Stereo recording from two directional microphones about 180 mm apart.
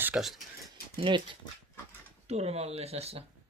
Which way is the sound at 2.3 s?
35° right (ahead or behind).